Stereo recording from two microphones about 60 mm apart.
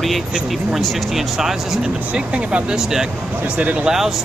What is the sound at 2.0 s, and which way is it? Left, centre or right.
Speech, right.